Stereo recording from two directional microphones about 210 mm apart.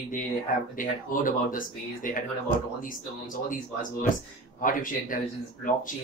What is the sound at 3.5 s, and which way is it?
Speech, 40° left (ahead or behind).